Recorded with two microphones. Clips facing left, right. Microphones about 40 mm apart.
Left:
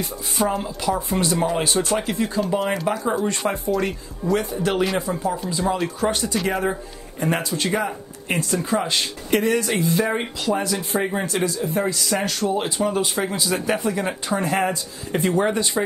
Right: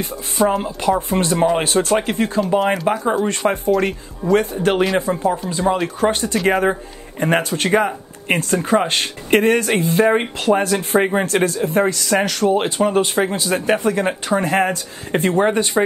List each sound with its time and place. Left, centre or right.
0.5 s speech: centre
0.8 s speech: right
2.6 s speech: centre
3.3 s speech: right
12.2 s speech: right